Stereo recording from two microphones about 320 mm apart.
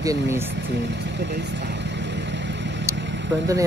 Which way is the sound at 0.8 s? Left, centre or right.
Right.